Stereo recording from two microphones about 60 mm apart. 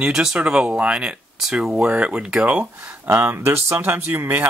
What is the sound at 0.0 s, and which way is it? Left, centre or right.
Speech, centre.